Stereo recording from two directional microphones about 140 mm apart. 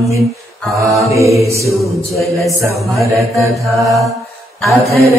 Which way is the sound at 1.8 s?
20° left (ahead or behind).